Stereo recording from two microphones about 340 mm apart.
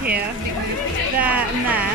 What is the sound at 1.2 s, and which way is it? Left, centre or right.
Speech, centre.